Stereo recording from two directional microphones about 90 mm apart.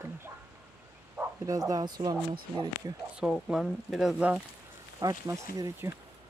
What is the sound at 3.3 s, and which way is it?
Speech, centre (ahead or behind).